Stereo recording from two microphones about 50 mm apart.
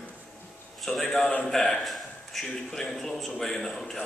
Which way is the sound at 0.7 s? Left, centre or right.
Centre.